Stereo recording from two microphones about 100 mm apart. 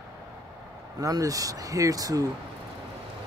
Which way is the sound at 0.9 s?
40° right (ahead or behind).